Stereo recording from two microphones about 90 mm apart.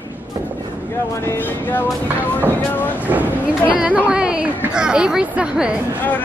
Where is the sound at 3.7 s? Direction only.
15° right (ahead or behind).